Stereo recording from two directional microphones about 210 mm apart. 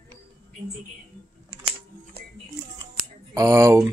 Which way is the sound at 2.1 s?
50° right (ahead or behind).